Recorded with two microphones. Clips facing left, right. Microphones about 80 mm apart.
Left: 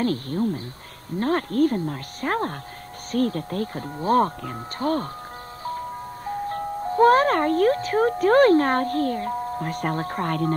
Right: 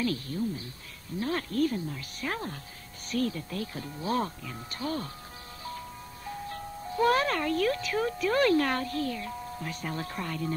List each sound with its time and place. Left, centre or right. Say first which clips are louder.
0.0 s speech: left 7 dB; left